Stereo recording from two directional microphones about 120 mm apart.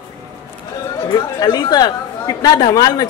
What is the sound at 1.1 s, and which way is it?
Speech, 35° left (ahead or behind).